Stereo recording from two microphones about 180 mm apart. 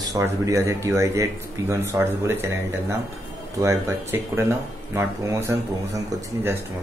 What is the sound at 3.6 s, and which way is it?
Speech, 15° right (ahead or behind).